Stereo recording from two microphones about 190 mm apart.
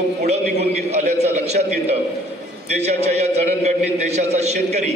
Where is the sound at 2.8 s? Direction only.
35° right (ahead or behind).